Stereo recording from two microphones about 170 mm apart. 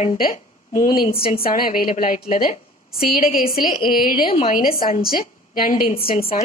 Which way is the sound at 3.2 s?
55° left (ahead or behind).